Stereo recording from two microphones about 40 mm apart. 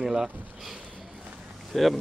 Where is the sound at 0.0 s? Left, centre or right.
Centre.